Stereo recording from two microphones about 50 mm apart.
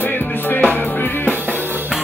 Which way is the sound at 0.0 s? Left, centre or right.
Left.